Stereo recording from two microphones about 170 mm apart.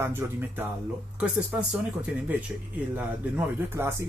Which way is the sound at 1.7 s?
10° right (ahead or behind).